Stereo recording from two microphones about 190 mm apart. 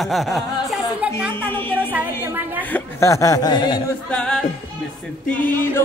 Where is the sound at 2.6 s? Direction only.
10° left (ahead or behind).